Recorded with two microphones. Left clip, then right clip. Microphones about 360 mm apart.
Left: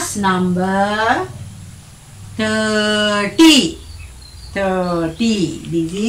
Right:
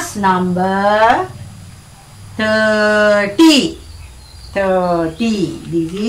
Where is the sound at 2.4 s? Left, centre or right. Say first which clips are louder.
Right 4 dB; centre.